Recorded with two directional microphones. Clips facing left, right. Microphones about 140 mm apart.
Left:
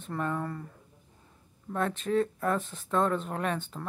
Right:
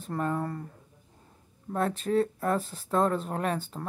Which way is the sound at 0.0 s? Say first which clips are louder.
Right 2 dB; 35° right (ahead or behind).